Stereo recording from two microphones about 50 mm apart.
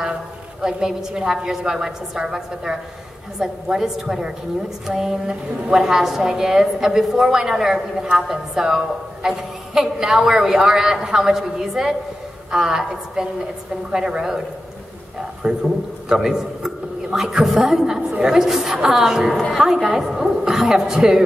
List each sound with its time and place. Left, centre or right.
0.6 s a woman's voice: centre
15.4 s a man's voice: right
16.1 s a woman's voice: centre